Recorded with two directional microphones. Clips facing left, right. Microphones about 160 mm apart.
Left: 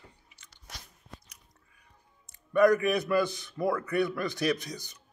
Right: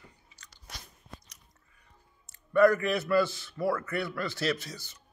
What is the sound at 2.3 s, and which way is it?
A man's voice, 15° left (ahead or behind).